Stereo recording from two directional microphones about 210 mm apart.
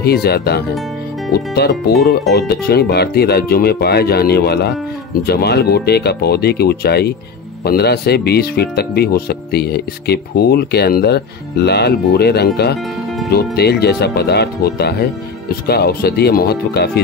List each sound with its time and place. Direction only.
0.0 s speech: 50° left (ahead or behind)